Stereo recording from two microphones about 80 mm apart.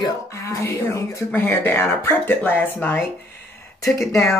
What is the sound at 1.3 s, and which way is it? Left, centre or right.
Speech, left.